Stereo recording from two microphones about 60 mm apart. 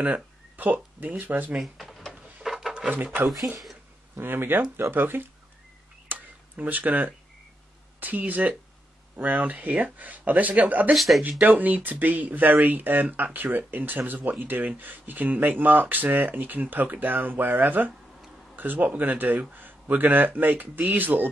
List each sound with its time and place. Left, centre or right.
0.0 s speech: right
1.6 s drawer open or close: centre
2.4 s a sound: centre
2.9 s speech: right
6.0 s a sound: right
8.0 s speech: right
11.0 s speech: centre
11.4 s speech: right